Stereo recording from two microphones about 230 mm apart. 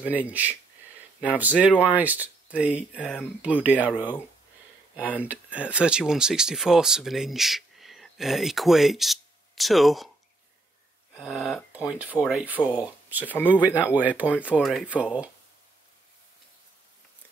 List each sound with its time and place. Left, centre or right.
0.0 s speech: centre
4.9 s speech: centre
11.1 s speech: centre